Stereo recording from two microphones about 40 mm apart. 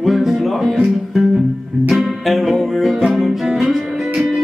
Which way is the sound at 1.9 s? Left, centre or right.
Centre.